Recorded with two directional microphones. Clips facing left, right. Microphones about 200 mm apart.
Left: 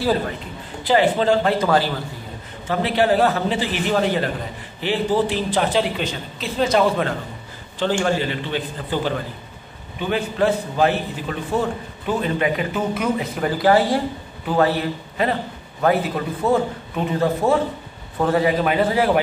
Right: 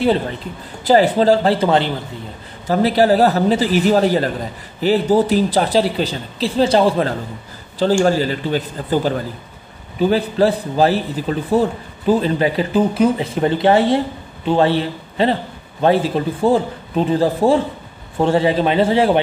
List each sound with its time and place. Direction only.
0.8 s speech: 40° right (ahead or behind)
2.7 s speech: 40° right (ahead or behind)